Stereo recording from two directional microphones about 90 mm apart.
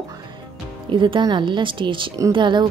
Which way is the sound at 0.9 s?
65° right (ahead or behind).